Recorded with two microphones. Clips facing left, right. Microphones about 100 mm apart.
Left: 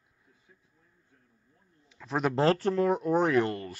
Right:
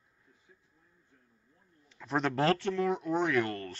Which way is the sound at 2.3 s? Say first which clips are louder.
Left 5 dB; 30° left (ahead or behind).